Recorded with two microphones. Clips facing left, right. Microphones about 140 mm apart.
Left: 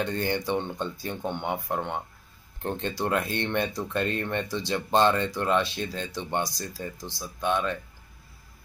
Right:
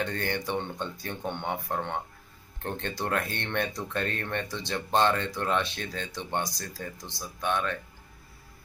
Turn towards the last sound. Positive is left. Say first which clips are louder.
# left 3 dB
turn(degrees=15)  # may be behind; listen again after turning